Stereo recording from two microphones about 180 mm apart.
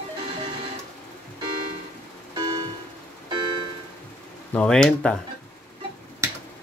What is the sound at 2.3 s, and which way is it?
Music, 25° right (ahead or behind).